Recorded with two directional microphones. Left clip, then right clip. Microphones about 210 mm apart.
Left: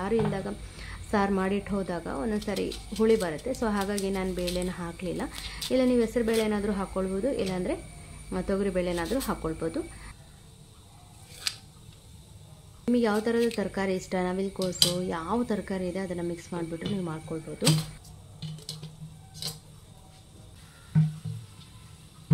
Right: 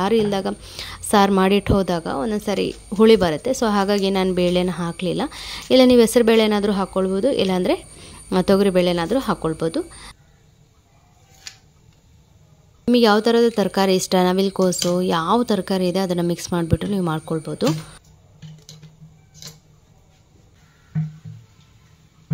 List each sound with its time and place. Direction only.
0.0 s a woman's voice: 35° right (ahead or behind)
12.9 s a woman's voice: 35° right (ahead or behind)